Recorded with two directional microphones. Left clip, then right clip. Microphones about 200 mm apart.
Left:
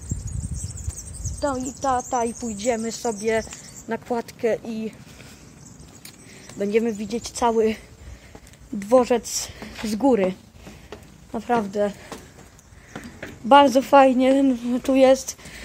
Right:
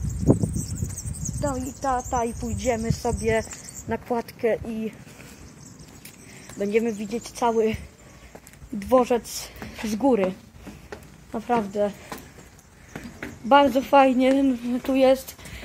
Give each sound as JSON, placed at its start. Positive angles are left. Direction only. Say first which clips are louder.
{"t": 1.4, "sound": "a woman's voice", "louder": "left 3 dB", "side_deg": 15}
{"t": 6.6, "sound": "a woman's voice", "louder": "left 2 dB", "side_deg": 15}
{"t": 11.3, "sound": "a woman's voice", "louder": "left 1 dB", "side_deg": 10}
{"t": 13.5, "sound": "speech", "louder": "left 3 dB", "side_deg": 25}